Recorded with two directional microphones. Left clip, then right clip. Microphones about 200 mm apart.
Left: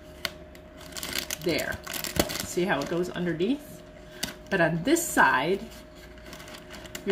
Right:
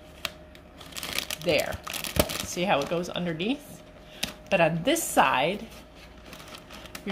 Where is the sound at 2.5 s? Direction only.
30° right (ahead or behind).